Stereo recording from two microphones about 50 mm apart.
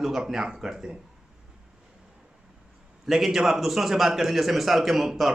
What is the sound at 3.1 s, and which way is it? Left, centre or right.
A man's voice, centre.